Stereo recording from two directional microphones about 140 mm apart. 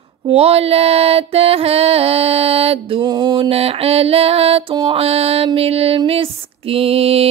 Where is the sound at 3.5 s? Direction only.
45° right (ahead or behind).